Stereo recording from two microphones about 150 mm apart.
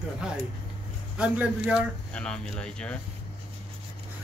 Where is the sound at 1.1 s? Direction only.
10° right (ahead or behind).